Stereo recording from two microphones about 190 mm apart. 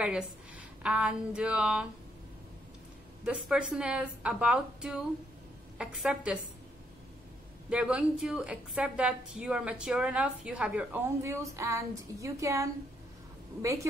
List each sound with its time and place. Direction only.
0.0 s a woman's voice: 5° right (ahead or behind)
3.3 s a woman's voice: 5° right (ahead or behind)
7.7 s a woman's voice: 5° right (ahead or behind)